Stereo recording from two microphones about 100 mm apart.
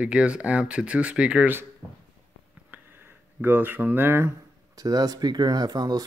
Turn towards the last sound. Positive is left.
turn(degrees=-40)  # may be behind; listen again after turning